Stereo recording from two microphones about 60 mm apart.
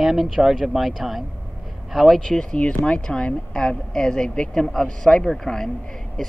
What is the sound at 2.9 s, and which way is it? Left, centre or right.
Speech, centre.